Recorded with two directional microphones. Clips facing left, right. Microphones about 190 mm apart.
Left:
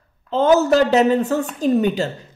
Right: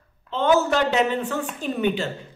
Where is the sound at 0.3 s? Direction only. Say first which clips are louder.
Left 5 dB; 40° left (ahead or behind).